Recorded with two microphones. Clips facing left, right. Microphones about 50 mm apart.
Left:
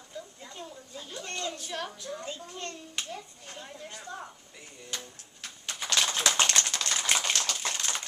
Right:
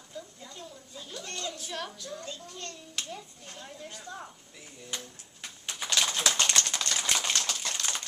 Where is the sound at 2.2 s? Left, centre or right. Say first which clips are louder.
Left 3 dB; left.